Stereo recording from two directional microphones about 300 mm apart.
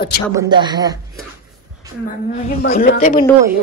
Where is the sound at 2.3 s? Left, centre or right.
Left.